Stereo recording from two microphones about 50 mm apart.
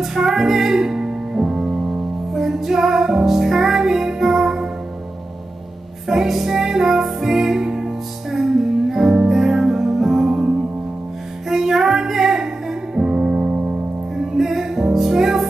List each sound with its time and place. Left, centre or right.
0.0 s music: centre
6.0 s music: centre
13.5 s music: right
14.1 s music: centre